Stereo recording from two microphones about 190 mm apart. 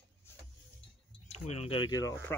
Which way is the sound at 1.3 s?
30° left (ahead or behind).